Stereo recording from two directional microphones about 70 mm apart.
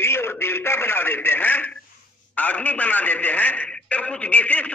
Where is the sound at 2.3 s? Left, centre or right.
Left.